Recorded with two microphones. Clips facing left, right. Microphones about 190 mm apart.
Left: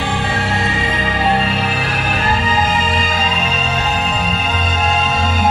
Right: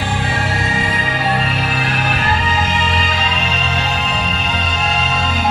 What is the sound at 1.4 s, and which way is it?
Music, 35° left (ahead or behind).